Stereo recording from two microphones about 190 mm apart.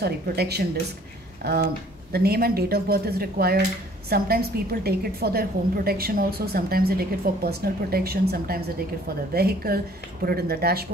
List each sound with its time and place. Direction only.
0.0 s a woman's voice: 60° right (ahead or behind)